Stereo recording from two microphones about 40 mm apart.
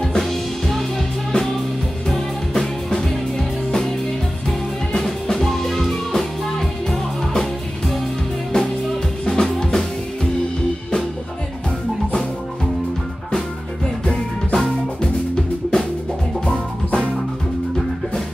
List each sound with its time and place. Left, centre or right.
0.0 s music: centre
8.5 s music: centre
14.5 s music: centre